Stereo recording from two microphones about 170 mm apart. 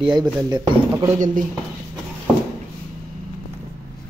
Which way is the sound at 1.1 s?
50° right (ahead or behind).